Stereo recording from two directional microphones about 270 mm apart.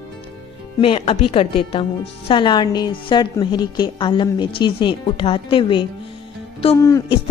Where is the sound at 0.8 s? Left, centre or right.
Left.